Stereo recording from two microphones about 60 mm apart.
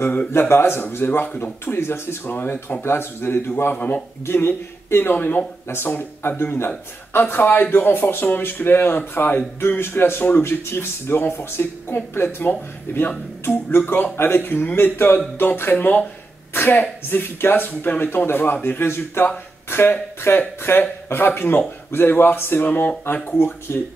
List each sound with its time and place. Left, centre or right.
0.3 s speech: left
2.8 s speech: left
3.7 s speech: left
4.3 s speech: left
5.1 s speech: left